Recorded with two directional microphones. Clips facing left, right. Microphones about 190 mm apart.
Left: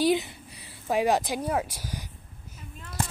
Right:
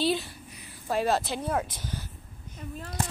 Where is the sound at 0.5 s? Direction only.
30° left (ahead or behind).